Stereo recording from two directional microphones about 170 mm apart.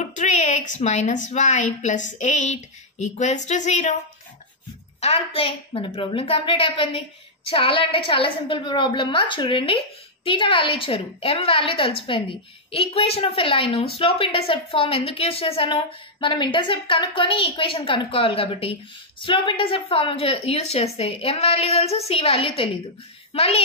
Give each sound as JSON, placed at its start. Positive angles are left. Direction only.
{"t": 0.0, "sound": "a woman's voice", "side_deg": 45}
{"t": 5.0, "sound": "a woman's voice", "side_deg": 35}